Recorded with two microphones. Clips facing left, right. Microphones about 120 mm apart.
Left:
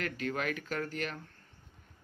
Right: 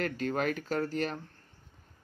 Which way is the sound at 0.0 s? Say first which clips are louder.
Right 4 dB; 40° right (ahead or behind).